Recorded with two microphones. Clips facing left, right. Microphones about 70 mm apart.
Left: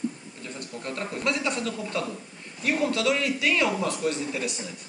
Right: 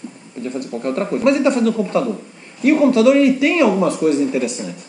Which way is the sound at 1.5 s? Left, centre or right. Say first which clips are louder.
Right 14 dB; right.